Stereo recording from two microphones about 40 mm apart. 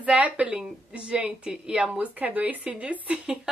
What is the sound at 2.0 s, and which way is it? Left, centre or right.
Speech, right.